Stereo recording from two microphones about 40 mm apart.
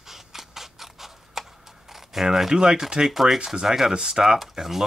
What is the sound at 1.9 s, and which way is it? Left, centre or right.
Speech, centre.